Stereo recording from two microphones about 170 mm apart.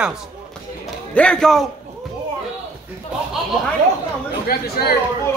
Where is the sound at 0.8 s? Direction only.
5° left (ahead or behind).